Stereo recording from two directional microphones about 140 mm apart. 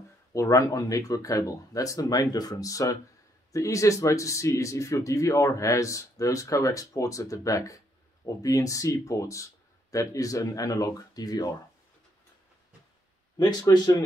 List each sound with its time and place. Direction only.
0.3 s speech: 25° left (ahead or behind)
13.4 s speech: 25° left (ahead or behind)